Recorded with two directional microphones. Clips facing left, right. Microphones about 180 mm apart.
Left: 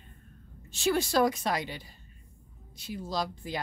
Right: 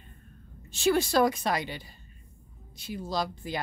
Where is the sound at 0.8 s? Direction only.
65° right (ahead or behind).